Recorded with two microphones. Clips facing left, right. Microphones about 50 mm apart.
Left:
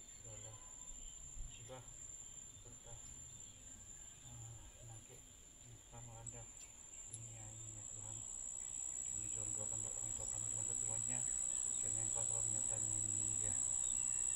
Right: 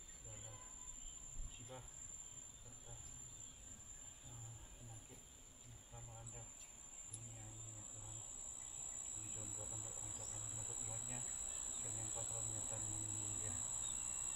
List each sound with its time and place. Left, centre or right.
0.3 s train: centre
1.7 s insect: centre
5.9 s speech: centre
9.2 s insect: centre
9.5 s speech: left
13.8 s bird: centre